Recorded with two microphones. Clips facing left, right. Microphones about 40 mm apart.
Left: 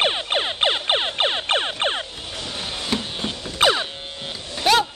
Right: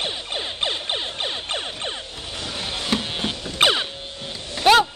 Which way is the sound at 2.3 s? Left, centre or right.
Centre.